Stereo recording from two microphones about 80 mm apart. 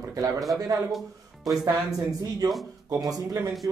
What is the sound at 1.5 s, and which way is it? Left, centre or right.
Speech, right.